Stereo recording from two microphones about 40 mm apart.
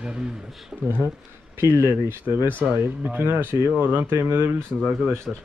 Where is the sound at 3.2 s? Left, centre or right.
Right.